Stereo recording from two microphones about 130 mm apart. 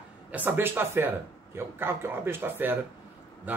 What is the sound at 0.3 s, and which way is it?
Speech, 10° right (ahead or behind).